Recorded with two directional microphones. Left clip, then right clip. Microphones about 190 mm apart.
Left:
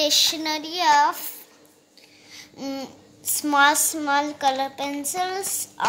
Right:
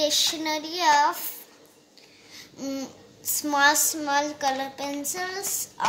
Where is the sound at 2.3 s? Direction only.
50° left (ahead or behind).